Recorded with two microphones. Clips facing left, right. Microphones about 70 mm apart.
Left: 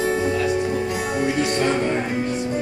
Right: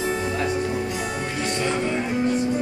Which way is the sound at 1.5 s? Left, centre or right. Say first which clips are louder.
Left 4 dB; left.